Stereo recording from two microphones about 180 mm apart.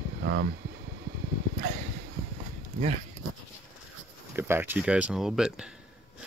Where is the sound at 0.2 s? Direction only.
65° right (ahead or behind).